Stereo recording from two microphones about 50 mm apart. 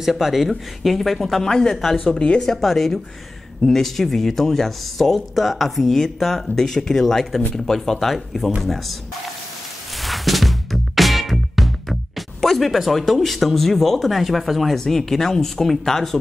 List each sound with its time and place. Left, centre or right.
0.0 s speech: centre
2.0 s speech: centre
2.4 s speech: centre
9.9 s music: centre